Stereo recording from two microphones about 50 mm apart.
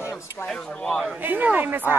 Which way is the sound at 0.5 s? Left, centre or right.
Centre.